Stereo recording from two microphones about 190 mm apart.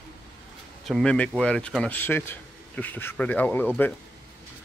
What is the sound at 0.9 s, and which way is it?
A man's voice, 5° left (ahead or behind).